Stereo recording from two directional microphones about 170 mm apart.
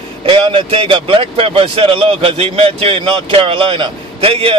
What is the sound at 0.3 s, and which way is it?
Speech, 30° right (ahead or behind).